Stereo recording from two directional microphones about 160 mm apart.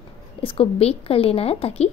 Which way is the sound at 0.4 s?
35° left (ahead or behind).